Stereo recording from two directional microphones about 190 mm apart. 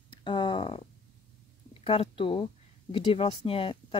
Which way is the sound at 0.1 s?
25° left (ahead or behind).